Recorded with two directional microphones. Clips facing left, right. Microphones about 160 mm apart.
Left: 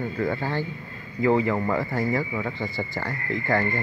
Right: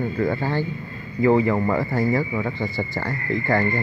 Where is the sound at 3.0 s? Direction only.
10° right (ahead or behind).